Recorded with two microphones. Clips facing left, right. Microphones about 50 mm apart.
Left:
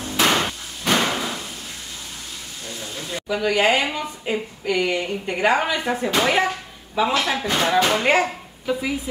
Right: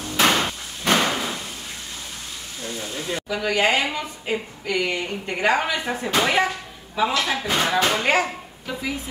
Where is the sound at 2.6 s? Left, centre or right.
Centre.